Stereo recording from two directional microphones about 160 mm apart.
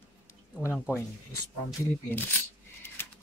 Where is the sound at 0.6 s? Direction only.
15° left (ahead or behind).